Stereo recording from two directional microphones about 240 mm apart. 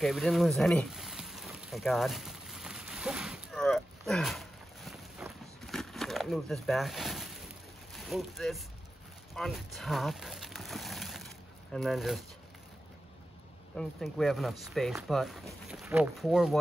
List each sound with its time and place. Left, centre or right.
0.0 s a sound: centre
7.9 s speech: centre
13.7 s speech: centre